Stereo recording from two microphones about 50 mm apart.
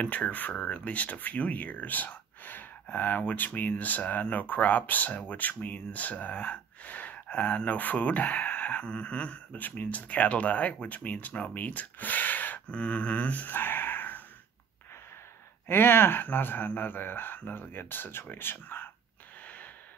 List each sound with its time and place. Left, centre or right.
0.0 s speech: left
15.7 s speech: left
19.4 s a sound: left